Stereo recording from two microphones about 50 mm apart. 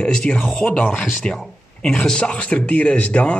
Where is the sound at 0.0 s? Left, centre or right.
Centre.